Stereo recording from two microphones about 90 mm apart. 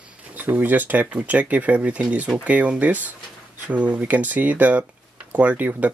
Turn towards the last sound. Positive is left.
turn(degrees=-15)  # may be behind; listen again after turning